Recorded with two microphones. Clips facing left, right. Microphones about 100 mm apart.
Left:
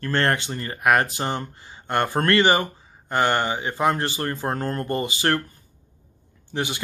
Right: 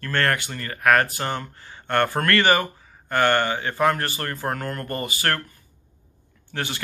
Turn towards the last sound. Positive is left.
turn(degrees=20)  # may be behind; listen again after turning